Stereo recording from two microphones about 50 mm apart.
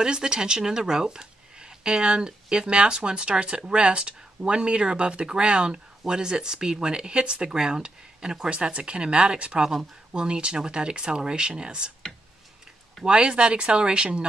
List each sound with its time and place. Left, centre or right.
0.0 s speech: centre
13.0 s speech: centre